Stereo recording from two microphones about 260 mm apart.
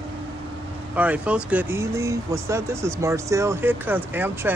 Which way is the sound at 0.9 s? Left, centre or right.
Centre.